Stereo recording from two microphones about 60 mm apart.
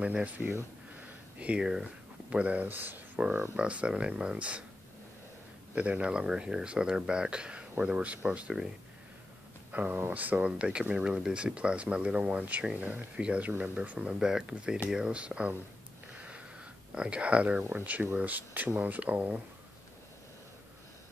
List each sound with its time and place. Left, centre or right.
0.0 s speech: right
0.4 s speech: right
1.4 s speech: centre
2.7 s speech: right
3.2 s speech: right
5.8 s speech: centre
9.7 s speech: right
16.9 s speech: centre